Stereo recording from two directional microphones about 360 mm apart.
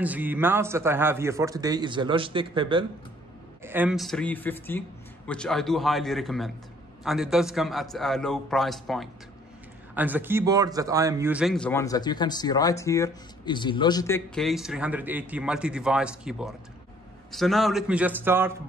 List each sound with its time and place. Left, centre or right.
0.0 s a man's voice: centre